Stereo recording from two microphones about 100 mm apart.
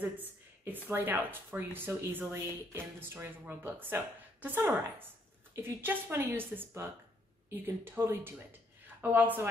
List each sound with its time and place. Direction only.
0.0 s a woman's voice: 20° right (ahead or behind)